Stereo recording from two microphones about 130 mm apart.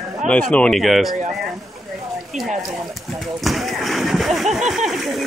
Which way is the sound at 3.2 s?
Centre (ahead or behind).